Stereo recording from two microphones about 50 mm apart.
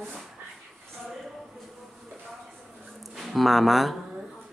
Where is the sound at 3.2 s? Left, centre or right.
Centre.